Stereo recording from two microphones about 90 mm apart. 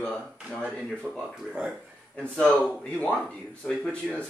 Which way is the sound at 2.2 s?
10° left (ahead or behind).